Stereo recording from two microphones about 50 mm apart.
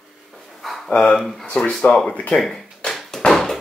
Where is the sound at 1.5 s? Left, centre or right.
Centre.